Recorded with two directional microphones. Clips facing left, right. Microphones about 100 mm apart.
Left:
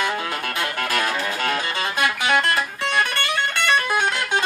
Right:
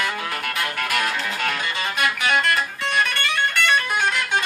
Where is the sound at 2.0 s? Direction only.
30° left (ahead or behind).